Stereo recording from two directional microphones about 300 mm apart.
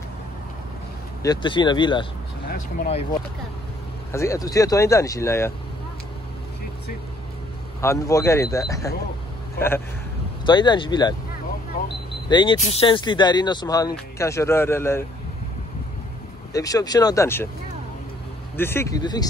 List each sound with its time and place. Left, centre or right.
1.2 s speech: centre
2.5 s speech: left
4.1 s speech: centre
7.8 s speech: centre
10.4 s speech: centre
12.3 s speech: centre
16.5 s speech: centre
18.6 s speech: centre